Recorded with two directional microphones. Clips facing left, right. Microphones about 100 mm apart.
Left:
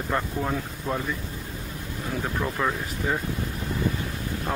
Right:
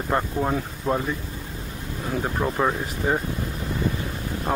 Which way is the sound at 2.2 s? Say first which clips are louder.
Right 4 dB; 25° right (ahead or behind).